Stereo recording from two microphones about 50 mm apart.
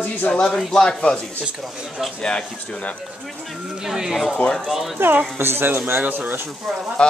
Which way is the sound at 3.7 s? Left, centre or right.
Centre.